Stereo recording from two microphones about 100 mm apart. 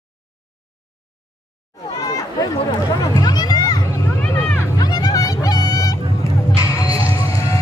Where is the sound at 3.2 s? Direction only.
45° left (ahead or behind).